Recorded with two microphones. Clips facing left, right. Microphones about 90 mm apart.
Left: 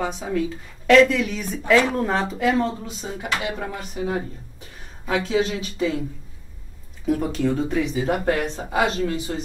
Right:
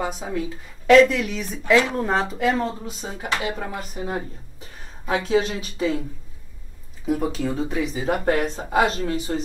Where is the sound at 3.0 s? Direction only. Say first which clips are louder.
Even; 35° right (ahead or behind).